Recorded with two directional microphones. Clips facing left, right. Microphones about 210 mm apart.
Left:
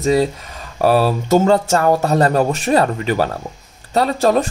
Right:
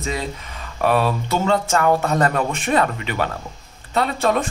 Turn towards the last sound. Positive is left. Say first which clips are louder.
# left 5 dB
turn(degrees=40)  # may be behind; listen again after turning